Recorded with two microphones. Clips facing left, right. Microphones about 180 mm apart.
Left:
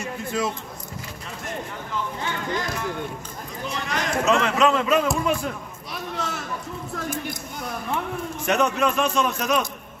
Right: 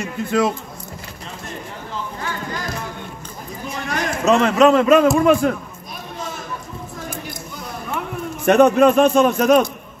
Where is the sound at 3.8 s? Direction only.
45° right (ahead or behind).